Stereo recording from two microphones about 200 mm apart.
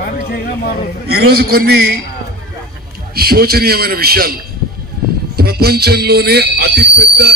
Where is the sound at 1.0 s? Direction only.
50° right (ahead or behind).